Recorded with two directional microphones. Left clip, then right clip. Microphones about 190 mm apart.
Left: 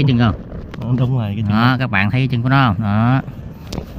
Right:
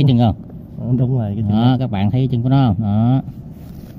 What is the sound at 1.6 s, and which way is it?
Speech, 10° right (ahead or behind).